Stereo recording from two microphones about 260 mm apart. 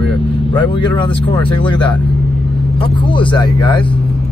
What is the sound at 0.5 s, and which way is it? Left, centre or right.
Speech, centre.